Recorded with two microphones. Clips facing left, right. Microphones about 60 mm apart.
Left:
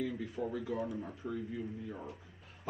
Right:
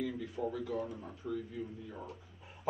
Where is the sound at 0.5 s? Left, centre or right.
Left.